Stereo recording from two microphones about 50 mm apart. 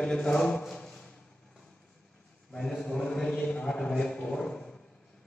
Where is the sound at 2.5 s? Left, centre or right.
Centre.